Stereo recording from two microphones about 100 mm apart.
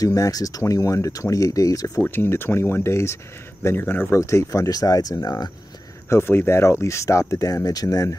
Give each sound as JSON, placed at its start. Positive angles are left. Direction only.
{"t": 0.0, "sound": "speech", "side_deg": 35}
{"t": 2.0, "sound": "speech", "side_deg": 20}
{"t": 6.0, "sound": "speech", "side_deg": 25}